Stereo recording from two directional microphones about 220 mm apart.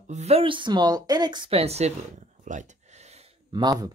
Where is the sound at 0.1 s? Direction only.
30° right (ahead or behind).